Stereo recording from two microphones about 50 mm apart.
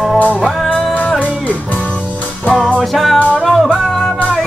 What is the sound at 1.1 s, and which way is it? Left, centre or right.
Music, left.